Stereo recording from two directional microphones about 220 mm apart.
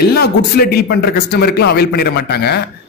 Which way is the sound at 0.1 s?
45° left (ahead or behind).